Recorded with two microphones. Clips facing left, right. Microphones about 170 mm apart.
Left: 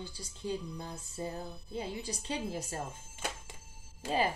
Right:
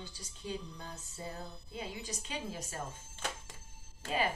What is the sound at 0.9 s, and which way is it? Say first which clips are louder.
A woman's voice: left 5 dB; 30° left (ahead or behind).